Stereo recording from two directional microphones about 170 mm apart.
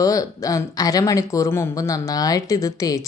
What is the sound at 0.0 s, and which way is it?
Speech, 20° left (ahead or behind).